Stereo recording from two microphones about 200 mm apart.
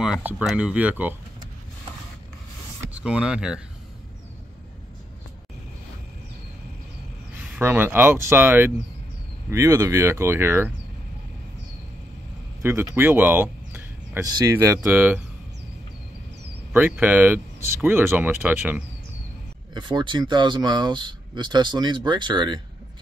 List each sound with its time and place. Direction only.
0.0 s speech: 5° right (ahead or behind)
3.0 s speech: 5° right (ahead or behind)
7.3 s speech: 10° right (ahead or behind)
12.6 s speech: 10° right (ahead or behind)
16.7 s speech: 10° right (ahead or behind)
19.7 s speech: 25° right (ahead or behind)